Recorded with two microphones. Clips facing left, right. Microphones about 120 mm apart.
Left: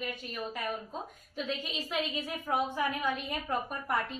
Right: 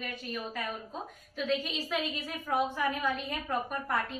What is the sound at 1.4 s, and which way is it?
Speech, 15° left (ahead or behind).